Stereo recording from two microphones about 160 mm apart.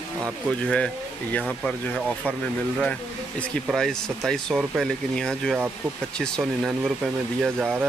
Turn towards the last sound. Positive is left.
turn(degrees=0)  # may be behind; listen again after turning